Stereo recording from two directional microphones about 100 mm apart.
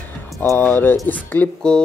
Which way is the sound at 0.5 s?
20° left (ahead or behind).